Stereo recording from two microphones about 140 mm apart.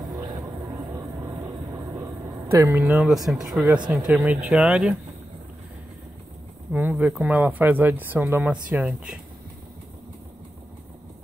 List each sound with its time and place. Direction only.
0.0 s music: 30° right (ahead or behind)
0.9 s vehicle: 20° right (ahead or behind)
2.0 s speech: 20° right (ahead or behind)
6.7 s speech: 10° right (ahead or behind)